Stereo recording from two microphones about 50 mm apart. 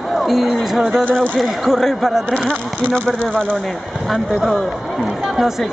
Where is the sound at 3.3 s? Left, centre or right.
Right.